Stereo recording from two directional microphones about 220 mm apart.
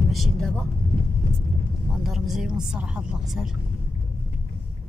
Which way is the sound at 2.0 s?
Centre (ahead or behind).